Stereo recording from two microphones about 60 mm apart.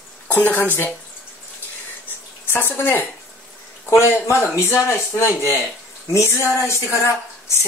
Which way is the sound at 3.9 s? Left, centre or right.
Left.